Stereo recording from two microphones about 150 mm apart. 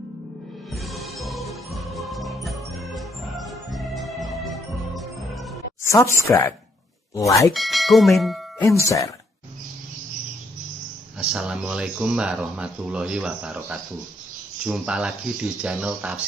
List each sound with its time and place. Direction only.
0.8 s music: centre (ahead or behind)
5.9 s speech: 20° left (ahead or behind)
7.5 s speech: centre (ahead or behind)
8.8 s speech: 20° left (ahead or behind)
11.1 s speech: 5° right (ahead or behind)